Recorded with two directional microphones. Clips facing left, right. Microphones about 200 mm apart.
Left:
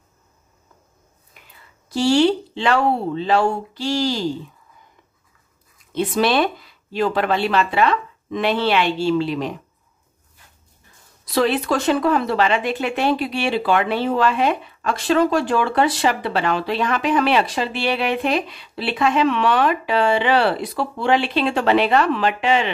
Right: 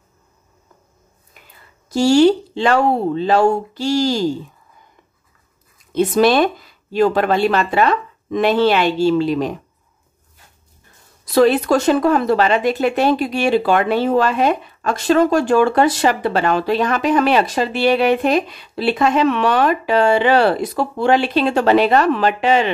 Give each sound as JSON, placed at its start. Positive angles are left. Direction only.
{"t": 1.9, "sound": "speech", "side_deg": -45}
{"t": 5.9, "sound": "speech", "side_deg": -45}
{"t": 11.3, "sound": "speech", "side_deg": -45}